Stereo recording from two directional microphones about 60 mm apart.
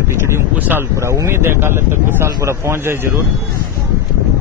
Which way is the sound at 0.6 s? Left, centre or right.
Right.